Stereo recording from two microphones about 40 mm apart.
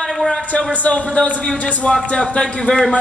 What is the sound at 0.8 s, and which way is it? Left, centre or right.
Speech, left.